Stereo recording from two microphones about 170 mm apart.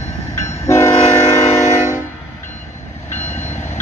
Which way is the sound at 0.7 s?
15° left (ahead or behind).